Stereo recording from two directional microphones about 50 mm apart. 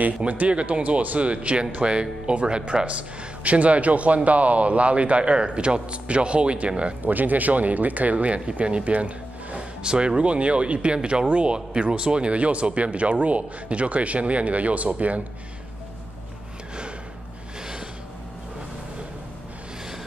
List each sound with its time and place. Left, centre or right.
0.0 s speech: right
7.0 s speech: right